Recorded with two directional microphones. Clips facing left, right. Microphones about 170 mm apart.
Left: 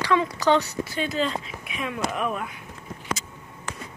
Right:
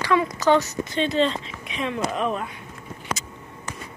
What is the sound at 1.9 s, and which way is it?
Speech, 25° right (ahead or behind).